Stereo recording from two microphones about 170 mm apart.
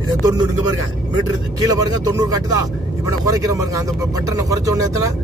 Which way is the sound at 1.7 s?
20° right (ahead or behind).